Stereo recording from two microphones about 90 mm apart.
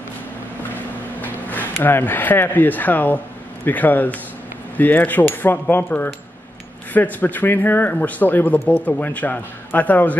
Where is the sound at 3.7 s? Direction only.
20° left (ahead or behind).